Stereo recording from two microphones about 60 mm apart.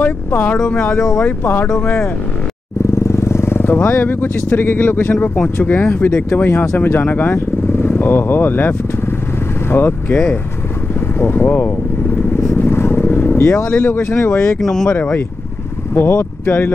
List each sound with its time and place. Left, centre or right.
0.0 s speech: left
0.6 s speech: centre
1.4 s speech: left
1.8 s speech: left
3.1 s speech: left
5.1 s speech: left
5.6 s speech: left
11.1 s speech: left
12.2 s vehicle: left
13.8 s speech: left
14.6 s speech: centre
15.9 s speech: left